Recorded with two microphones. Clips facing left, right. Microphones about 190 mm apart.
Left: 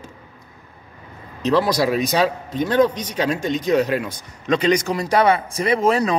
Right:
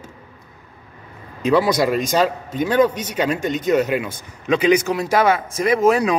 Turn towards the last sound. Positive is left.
turn(degrees=-5)  # may be behind; listen again after turning